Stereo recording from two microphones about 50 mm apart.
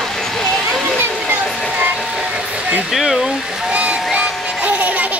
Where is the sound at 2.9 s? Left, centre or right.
Centre.